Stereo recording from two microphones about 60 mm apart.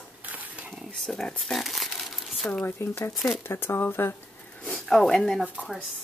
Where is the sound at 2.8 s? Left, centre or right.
Left.